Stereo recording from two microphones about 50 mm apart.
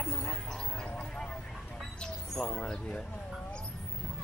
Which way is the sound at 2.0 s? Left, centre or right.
Centre.